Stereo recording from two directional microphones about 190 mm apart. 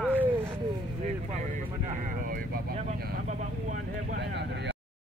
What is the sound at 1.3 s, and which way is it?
Speech, 40° right (ahead or behind).